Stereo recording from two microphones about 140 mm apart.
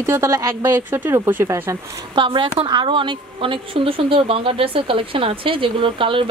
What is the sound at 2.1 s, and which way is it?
Speech, 35° right (ahead or behind).